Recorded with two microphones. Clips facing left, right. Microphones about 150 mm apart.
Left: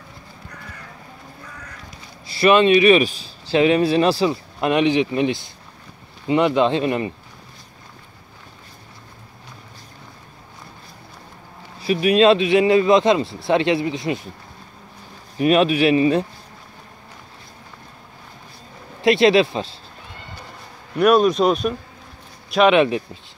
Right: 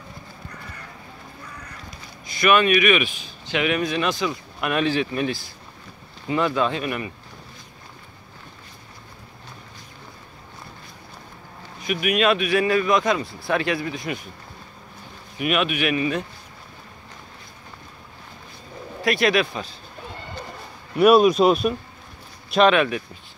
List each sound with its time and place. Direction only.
2.2 s speech: 30° left (ahead or behind)
11.8 s speech: 30° left (ahead or behind)
15.3 s speech: 35° left (ahead or behind)
19.0 s speech: 25° left (ahead or behind)
20.9 s speech: 5° right (ahead or behind)
22.7 s speech: 25° left (ahead or behind)